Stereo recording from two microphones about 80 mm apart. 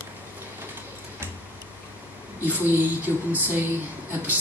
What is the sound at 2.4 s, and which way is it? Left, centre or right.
Speech, right.